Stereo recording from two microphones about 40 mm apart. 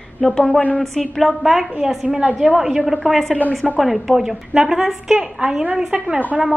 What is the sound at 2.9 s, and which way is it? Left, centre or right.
A woman's voice, centre.